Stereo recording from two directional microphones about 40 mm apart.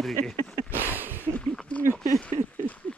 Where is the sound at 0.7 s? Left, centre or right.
Right.